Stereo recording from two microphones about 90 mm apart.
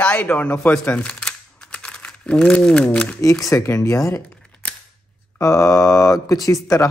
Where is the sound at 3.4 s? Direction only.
35° left (ahead or behind).